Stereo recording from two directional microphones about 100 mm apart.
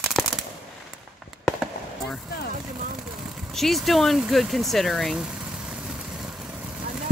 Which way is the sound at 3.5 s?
Centre (ahead or behind).